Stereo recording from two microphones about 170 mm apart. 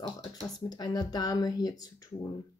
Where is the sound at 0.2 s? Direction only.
30° left (ahead or behind).